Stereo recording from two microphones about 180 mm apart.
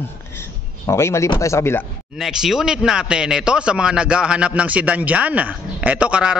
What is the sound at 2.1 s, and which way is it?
Speech, centre (ahead or behind).